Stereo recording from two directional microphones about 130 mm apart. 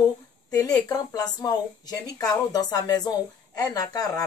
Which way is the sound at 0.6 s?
30° left (ahead or behind).